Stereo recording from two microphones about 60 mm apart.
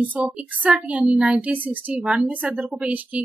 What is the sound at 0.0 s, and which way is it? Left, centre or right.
A woman's voice, right.